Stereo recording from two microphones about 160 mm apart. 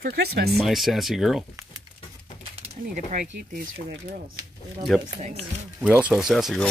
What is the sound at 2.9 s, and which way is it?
Speech, 55° right (ahead or behind).